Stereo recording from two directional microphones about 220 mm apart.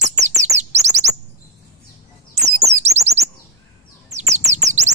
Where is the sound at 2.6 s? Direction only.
30° right (ahead or behind).